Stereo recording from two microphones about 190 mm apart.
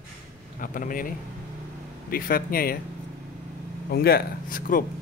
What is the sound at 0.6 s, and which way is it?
Speech, 45° left (ahead or behind).